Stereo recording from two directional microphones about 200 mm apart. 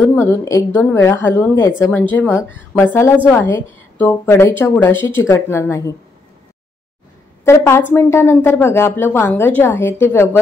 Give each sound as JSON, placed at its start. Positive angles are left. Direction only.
{"t": 0.1, "sound": "a woman's voice", "side_deg": 15}
{"t": 7.4, "sound": "a woman's voice", "side_deg": 15}